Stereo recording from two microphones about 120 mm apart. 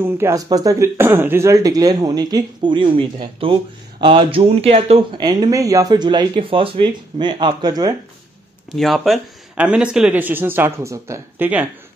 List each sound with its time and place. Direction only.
0.0 s speech: 20° right (ahead or behind)
0.4 s a man's voice: 30° right (ahead or behind); by 5.0 s 55° right (ahead or behind)
5.1 s speech: 35° right (ahead or behind)
8.7 s speech: centre (ahead or behind)